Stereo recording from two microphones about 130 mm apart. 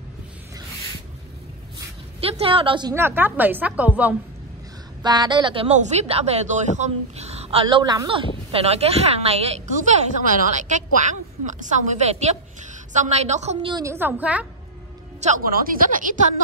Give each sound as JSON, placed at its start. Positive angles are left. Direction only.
{"t": 2.1, "sound": "speech", "side_deg": -50}
{"t": 2.9, "sound": "a woman's voice", "side_deg": -20}
{"t": 5.0, "sound": "a woman's voice", "side_deg": -35}
{"t": 5.7, "sound": "a woman's voice", "side_deg": -60}
{"t": 7.6, "sound": "speech", "side_deg": -30}
{"t": 9.8, "sound": "a woman's voice", "side_deg": -80}
{"t": 13.6, "sound": "a woman's voice", "side_deg": -40}
{"t": 13.8, "sound": "a woman's voice", "side_deg": -15}
{"t": 15.1, "sound": "a woman's voice", "side_deg": -75}